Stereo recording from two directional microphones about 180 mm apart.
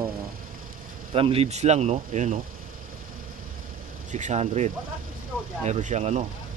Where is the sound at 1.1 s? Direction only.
30° right (ahead or behind).